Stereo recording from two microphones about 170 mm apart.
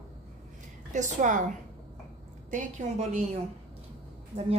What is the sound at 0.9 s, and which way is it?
Speech, 45° right (ahead or behind).